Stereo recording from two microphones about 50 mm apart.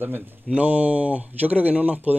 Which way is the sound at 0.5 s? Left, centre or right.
Right.